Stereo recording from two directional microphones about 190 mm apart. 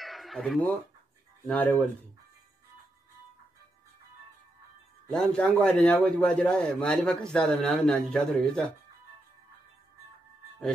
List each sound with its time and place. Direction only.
0.0 s fowl: centre (ahead or behind)
1.5 s speech: 10° left (ahead or behind)
5.1 s a man's voice: 5° left (ahead or behind)